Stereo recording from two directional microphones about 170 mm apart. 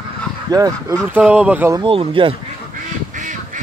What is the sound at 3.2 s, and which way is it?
Duck, 50° right (ahead or behind).